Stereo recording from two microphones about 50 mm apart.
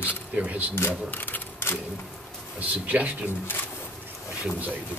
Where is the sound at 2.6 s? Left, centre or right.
Right.